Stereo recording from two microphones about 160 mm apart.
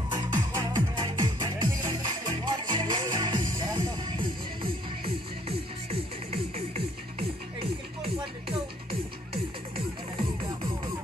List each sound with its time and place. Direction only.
0.1 s music: 20° right (ahead or behind)
6.3 s music: 40° right (ahead or behind)